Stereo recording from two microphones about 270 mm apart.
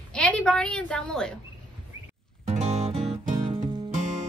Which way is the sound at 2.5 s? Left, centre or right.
Right.